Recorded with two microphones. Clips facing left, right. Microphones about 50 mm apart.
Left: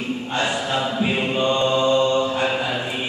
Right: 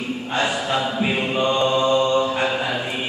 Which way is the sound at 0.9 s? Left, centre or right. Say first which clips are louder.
Even; centre.